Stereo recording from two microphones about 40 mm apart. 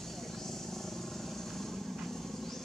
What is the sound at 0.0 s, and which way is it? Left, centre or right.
Vehicle, centre.